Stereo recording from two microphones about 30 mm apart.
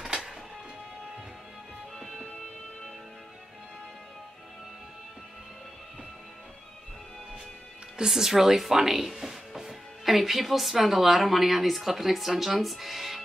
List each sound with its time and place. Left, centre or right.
2.0 s music: centre
8.1 s speech: centre